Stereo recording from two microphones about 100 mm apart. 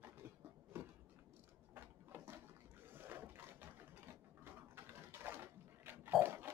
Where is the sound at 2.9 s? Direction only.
20° right (ahead or behind).